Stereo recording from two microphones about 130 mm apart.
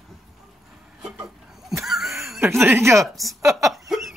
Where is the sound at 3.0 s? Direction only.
Centre (ahead or behind).